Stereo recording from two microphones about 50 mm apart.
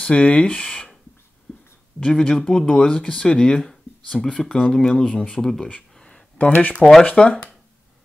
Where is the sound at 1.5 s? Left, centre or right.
Left.